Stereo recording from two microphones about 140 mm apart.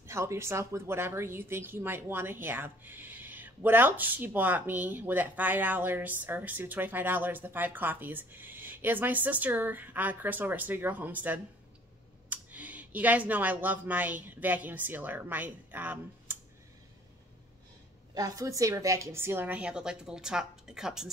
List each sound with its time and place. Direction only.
0.0 s speech: 20° right (ahead or behind)
18.1 s speech: 25° right (ahead or behind); by 21.1 s 5° right (ahead or behind)